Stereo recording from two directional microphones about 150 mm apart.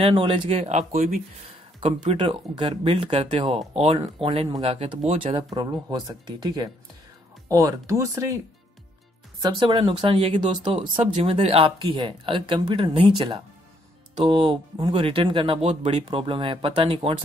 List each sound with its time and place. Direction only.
0.0 s speech: 35° right (ahead or behind); by 8.4 s 20° right (ahead or behind)
9.4 s speech: 30° right (ahead or behind)